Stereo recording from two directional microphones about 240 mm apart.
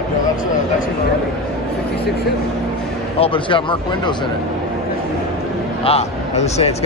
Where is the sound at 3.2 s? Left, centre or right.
Left.